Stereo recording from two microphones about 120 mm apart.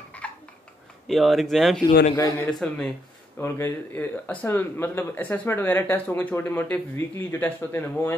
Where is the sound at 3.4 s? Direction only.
20° left (ahead or behind).